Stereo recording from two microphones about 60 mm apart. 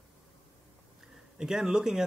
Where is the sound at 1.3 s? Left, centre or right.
Centre.